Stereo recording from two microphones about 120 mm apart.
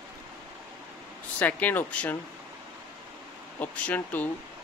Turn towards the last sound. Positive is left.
turn(degrees=15)  # may be behind; listen again after turning